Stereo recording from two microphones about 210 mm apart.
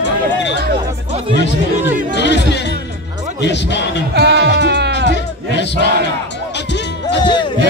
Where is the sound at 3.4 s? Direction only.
55° left (ahead or behind).